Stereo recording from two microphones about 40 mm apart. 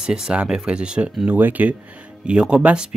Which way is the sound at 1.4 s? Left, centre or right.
Right.